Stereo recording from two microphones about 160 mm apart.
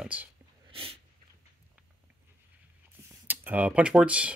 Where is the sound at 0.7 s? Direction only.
35° right (ahead or behind).